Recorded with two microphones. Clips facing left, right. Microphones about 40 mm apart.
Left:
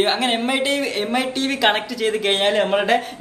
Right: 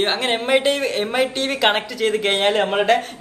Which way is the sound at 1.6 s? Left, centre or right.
Centre.